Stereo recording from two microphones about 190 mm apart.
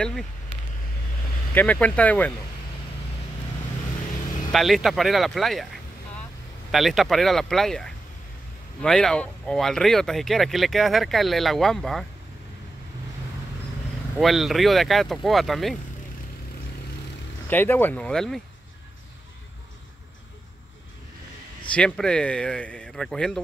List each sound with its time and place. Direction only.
1.5 s speech: 10° left (ahead or behind)
4.5 s speech: centre (ahead or behind)
6.7 s speech: centre (ahead or behind)
14.1 s speech: centre (ahead or behind)
17.5 s speech: 10° left (ahead or behind)
21.7 s speech: 5° left (ahead or behind)